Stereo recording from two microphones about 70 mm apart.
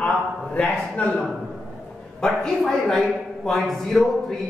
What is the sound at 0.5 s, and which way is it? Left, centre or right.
Speech, centre.